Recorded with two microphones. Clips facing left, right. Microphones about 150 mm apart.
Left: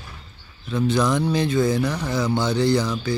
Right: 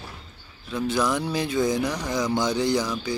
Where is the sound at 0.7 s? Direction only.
10° right (ahead or behind).